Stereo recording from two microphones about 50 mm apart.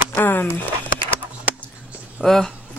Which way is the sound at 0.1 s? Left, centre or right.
Left.